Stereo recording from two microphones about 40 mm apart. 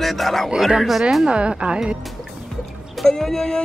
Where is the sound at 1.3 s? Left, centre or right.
Right.